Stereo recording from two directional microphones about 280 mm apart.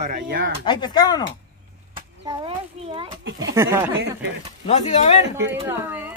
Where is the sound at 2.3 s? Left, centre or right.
Centre.